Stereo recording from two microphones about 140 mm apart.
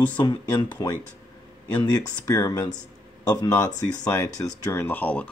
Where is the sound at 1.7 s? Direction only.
30° left (ahead or behind); by 5.2 s 10° left (ahead or behind).